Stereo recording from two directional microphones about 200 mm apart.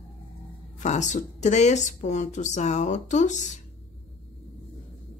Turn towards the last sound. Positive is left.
turn(degrees=35)  # may be behind; listen again after turning